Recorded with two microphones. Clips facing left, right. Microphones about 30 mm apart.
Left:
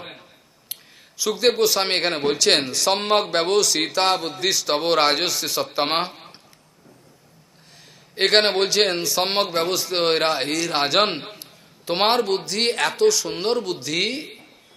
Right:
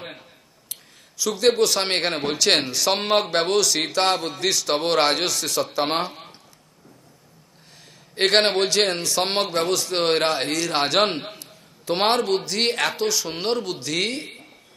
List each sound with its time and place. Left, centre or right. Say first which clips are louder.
0.7 s a man's voice: left 2 dB; centre
5.7 s speech: left 1 dB; left
8.2 s a man's voice: left 1 dB; centre